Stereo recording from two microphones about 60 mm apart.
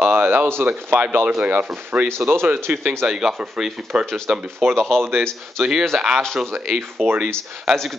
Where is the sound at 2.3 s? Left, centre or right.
Right.